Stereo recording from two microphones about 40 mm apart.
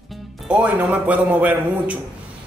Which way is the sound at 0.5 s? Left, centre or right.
Right.